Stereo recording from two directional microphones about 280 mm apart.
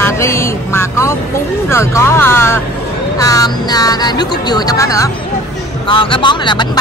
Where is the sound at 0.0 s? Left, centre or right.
Centre.